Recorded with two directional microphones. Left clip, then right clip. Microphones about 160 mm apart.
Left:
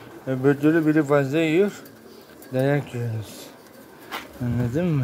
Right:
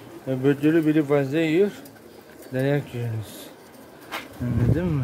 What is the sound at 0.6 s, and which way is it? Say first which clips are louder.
Speech: left 1 dB; 15° left (ahead or behind).